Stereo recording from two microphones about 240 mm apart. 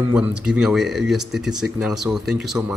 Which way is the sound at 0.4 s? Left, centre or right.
Centre.